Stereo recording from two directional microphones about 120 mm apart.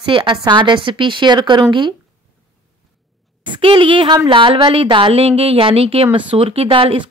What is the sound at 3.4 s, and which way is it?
Speech, 40° right (ahead or behind).